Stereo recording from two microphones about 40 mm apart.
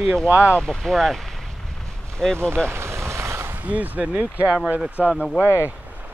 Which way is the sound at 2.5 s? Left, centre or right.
Right.